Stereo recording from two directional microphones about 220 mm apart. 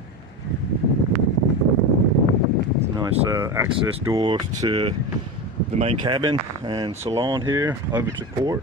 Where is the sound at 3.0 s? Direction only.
15° right (ahead or behind).